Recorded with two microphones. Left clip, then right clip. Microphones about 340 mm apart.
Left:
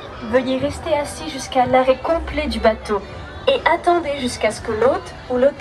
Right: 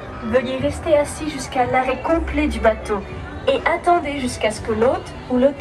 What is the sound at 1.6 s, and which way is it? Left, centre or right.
A woman's voice, left.